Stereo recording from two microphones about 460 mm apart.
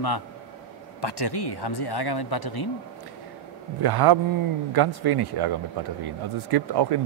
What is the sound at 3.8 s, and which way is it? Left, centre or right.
A man's voice, right.